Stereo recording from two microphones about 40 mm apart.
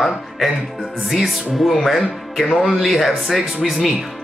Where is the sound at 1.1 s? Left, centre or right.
Centre.